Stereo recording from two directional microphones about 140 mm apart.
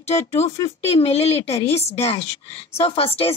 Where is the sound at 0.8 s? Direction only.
45° left (ahead or behind).